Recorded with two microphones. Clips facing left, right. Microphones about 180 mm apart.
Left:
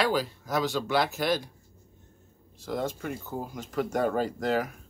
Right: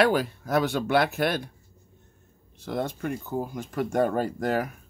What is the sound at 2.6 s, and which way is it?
Speech, 55° right (ahead or behind).